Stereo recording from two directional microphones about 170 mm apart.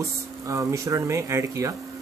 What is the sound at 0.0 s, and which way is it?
Speech, 20° right (ahead or behind).